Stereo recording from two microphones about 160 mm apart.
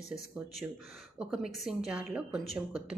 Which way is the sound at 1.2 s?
5° right (ahead or behind).